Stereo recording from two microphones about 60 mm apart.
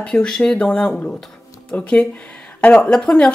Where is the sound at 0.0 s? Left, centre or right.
Centre.